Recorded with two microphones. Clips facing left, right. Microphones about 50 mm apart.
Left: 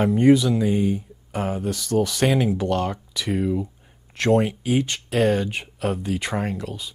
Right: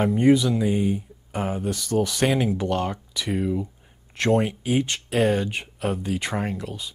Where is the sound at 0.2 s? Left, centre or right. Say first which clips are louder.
Left 2 dB; centre.